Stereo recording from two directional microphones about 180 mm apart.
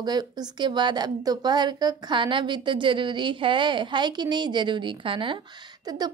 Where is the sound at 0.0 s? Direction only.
25° right (ahead or behind).